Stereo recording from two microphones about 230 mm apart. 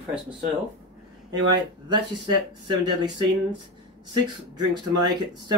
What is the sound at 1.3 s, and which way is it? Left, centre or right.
Speech, centre.